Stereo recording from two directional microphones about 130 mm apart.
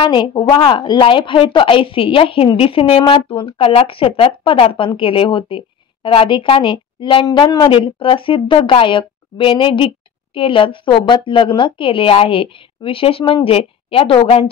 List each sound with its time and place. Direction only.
0.0 s a woman's voice: 35° left (ahead or behind)